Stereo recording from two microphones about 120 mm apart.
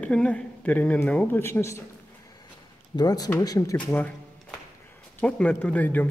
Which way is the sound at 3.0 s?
35° left (ahead or behind).